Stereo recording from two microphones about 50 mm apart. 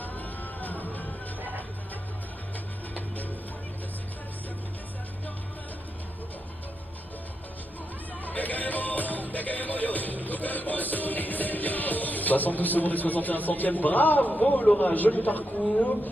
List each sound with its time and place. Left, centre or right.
0.0 s music: left
8.3 s music: left
14.8 s speech: left